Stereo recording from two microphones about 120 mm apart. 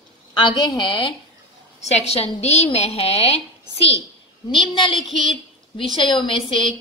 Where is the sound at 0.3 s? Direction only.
40° left (ahead or behind).